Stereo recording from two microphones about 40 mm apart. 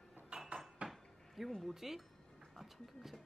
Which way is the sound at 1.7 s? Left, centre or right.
Centre.